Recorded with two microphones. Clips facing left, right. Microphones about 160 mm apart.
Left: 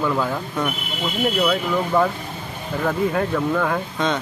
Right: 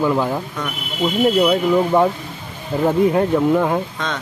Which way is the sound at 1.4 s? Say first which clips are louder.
Right 5 dB; 25° right (ahead or behind).